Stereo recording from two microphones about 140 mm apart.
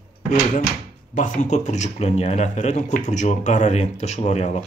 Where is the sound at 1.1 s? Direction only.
65° left (ahead or behind).